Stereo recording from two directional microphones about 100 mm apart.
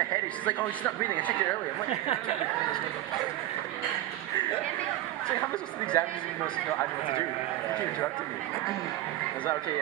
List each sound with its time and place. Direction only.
0.5 s speech: 15° left (ahead or behind)
1.9 s speech: 75° left (ahead or behind)
5.4 s speech: 10° left (ahead or behind)